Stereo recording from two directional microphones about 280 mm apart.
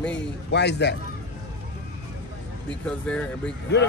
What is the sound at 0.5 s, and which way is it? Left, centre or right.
Speech, left.